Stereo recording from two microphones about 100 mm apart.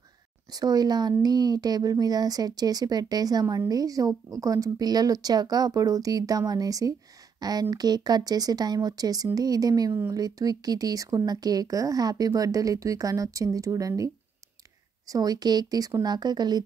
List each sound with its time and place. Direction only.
0.5 s a woman's voice: 40° right (ahead or behind)